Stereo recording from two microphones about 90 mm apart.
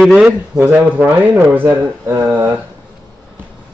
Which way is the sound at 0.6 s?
15° right (ahead or behind).